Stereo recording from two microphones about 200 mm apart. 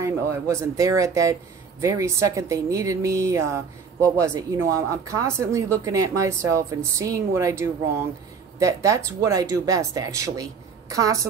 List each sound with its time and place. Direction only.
0.0 s a woman's voice: 15° right (ahead or behind)